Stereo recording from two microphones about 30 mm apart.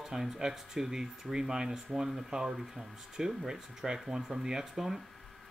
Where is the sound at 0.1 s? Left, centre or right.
Centre.